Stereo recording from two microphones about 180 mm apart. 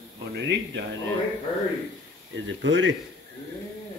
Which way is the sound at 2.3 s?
90° right.